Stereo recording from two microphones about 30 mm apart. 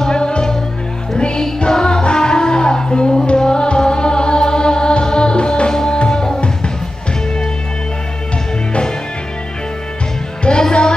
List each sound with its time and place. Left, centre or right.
0.0 s music: left
10.7 s music: left